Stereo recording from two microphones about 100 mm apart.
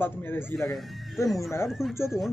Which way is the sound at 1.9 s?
25° left (ahead or behind).